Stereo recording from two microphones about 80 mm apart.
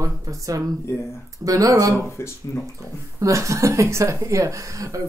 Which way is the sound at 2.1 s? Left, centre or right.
Left.